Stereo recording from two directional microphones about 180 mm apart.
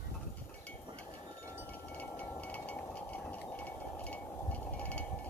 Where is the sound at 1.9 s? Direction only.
10° left (ahead or behind).